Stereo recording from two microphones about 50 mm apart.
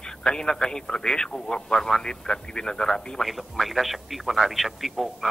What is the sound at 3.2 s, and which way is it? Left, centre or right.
A man's voice, centre.